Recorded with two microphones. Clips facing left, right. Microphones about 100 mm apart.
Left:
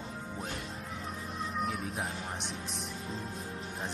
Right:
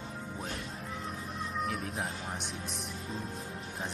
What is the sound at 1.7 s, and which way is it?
Speech, centre (ahead or behind).